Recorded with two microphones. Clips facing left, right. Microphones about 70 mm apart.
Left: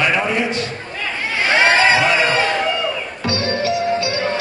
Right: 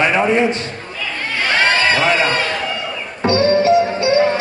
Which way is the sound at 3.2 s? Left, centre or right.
Right.